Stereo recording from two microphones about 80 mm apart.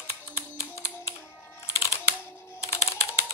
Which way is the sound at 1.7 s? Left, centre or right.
Left.